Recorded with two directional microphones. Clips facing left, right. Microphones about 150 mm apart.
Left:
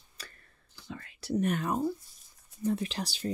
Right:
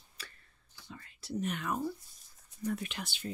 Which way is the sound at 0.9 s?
75° left (ahead or behind).